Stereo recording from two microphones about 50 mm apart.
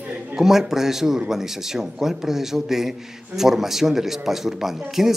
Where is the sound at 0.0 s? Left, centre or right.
Right.